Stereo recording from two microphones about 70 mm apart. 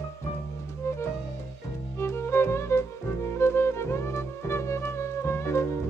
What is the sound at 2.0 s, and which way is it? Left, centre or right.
Music, left.